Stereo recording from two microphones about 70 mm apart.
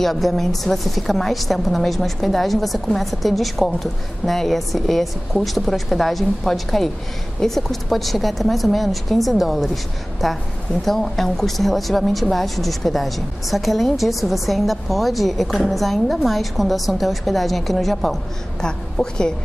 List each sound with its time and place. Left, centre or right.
0.0 s a woman's voice: centre